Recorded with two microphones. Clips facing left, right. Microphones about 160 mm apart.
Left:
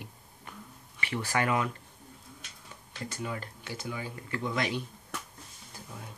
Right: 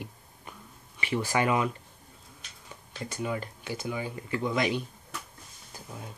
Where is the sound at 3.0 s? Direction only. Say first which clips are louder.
Right 4 dB; 15° right (ahead or behind).